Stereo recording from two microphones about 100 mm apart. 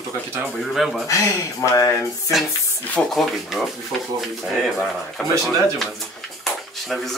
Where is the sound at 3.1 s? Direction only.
Centre (ahead or behind).